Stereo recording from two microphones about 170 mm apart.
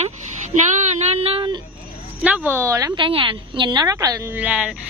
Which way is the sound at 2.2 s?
10° right (ahead or behind).